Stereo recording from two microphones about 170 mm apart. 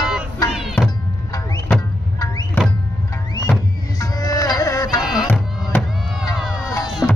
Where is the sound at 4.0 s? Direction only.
20° left (ahead or behind).